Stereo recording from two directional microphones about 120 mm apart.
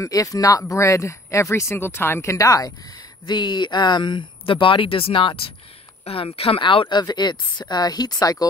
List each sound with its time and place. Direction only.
0.0 s speech: 30° left (ahead or behind)